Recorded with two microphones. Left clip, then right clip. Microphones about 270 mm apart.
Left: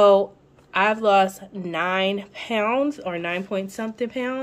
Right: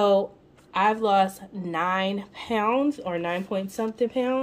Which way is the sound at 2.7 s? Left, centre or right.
Centre.